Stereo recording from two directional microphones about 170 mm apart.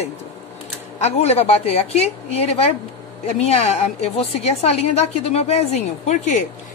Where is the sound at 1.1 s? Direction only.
35° left (ahead or behind).